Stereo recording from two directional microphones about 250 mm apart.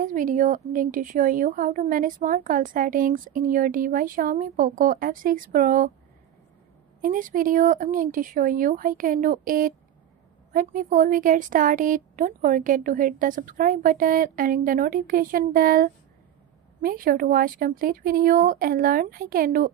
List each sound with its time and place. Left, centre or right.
0.0 s a woman's voice: right
7.0 s a woman's voice: right